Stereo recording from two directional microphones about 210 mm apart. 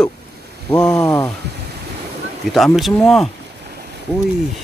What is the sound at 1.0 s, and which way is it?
Speech, 15° left (ahead or behind).